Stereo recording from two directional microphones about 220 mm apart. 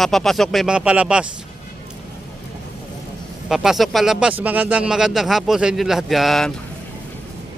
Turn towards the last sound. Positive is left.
turn(degrees=0)  # may be behind; listen again after turning